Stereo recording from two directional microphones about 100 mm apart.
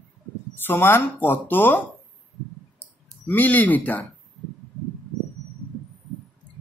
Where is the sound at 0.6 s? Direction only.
20° left (ahead or behind).